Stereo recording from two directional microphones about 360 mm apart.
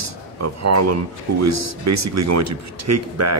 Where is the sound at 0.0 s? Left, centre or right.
Right.